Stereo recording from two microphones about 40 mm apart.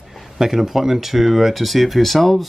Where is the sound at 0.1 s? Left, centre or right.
Centre.